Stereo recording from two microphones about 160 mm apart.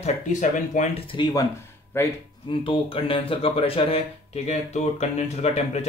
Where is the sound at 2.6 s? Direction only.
35° left (ahead or behind).